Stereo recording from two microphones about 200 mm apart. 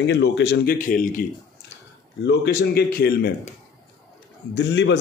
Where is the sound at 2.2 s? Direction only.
55° left (ahead or behind).